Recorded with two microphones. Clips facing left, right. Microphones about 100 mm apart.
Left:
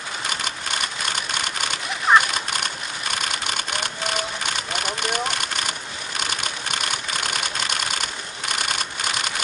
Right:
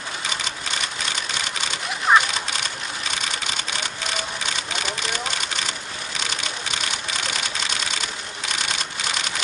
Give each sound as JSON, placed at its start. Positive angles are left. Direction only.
{"t": 2.1, "sound": "a sound", "side_deg": 0}
{"t": 3.7, "sound": "sewing machine", "side_deg": 55}
{"t": 8.5, "sound": "typewriter", "side_deg": 50}